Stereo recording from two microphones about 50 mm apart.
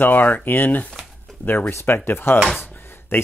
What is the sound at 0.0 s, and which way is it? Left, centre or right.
Speech, left.